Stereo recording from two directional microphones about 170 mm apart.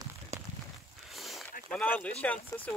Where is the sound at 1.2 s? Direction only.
Centre (ahead or behind).